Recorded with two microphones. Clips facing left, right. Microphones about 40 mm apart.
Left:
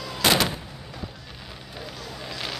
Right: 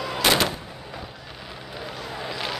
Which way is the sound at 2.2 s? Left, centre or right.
Centre.